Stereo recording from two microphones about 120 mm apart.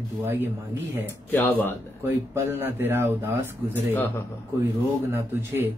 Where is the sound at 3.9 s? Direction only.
15° left (ahead or behind).